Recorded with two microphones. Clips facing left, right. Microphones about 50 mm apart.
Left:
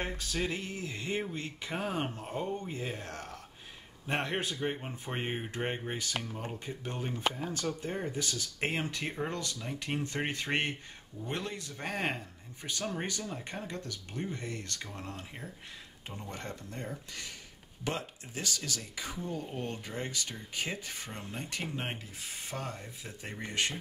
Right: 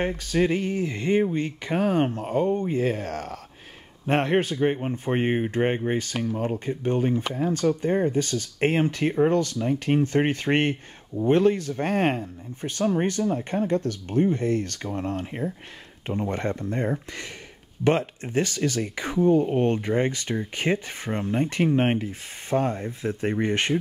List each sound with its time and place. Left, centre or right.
0.3 s speech: right
4.0 s speech: right